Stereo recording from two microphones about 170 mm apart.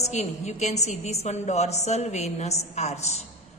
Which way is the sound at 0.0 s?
40° left (ahead or behind).